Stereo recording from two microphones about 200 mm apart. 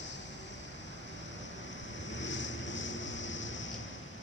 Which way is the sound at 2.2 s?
65° left (ahead or behind).